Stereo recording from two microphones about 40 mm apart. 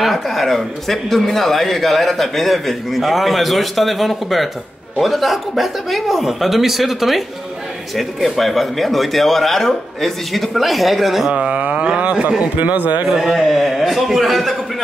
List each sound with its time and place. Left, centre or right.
0.0 s speech: centre
11.3 s speech: right
12.5 s a man's voice: right
13.1 s speech: centre